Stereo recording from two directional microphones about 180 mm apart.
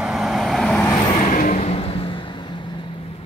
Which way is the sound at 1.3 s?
45° left (ahead or behind).